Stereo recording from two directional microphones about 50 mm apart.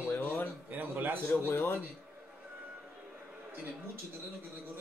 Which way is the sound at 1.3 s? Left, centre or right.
Left.